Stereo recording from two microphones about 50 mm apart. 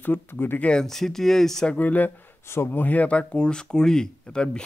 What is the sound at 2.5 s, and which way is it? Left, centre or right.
Speech, left.